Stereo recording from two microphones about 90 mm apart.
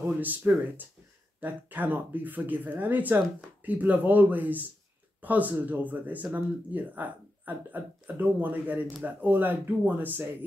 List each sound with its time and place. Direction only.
0.2 s speech: 20° right (ahead or behind)